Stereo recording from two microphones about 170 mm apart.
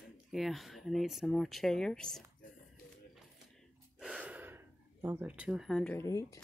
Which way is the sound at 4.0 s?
5° right (ahead or behind).